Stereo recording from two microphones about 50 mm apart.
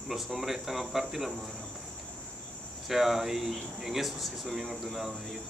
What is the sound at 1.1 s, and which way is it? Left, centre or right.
Speech, centre.